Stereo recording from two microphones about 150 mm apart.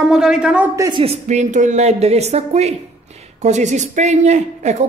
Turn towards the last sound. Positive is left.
turn(degrees=-50)  # may be behind; listen again after turning